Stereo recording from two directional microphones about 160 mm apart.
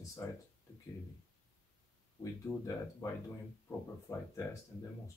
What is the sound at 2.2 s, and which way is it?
Speech, 20° left (ahead or behind).